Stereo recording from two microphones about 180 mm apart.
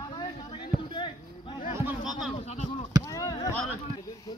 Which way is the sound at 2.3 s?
40° left (ahead or behind).